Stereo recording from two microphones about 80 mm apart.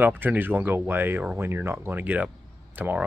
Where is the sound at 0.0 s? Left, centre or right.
Right.